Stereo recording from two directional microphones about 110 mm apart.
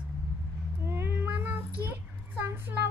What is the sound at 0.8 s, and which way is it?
Cat, 20° right (ahead or behind).